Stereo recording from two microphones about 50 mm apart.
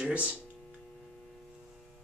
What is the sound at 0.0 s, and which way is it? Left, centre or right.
Speech, right.